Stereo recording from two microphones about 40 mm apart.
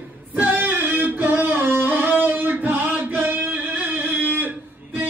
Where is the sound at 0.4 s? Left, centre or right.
Right.